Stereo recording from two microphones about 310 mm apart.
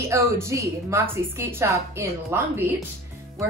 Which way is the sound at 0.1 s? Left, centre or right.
Centre.